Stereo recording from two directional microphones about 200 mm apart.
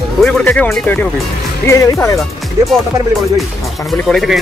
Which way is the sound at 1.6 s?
15° left (ahead or behind).